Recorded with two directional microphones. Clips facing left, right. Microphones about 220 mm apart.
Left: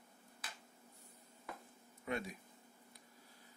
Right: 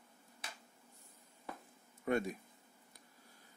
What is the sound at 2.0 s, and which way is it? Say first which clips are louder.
Speech: right 7 dB; 50° right (ahead or behind).